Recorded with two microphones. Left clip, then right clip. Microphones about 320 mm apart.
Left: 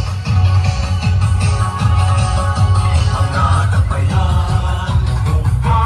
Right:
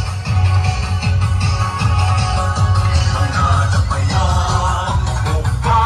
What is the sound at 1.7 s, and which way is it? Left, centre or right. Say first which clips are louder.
Music: right 1 dB; centre.